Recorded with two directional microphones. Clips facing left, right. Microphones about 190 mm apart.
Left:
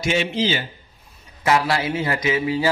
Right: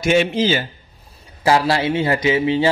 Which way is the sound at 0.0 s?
50° right (ahead or behind).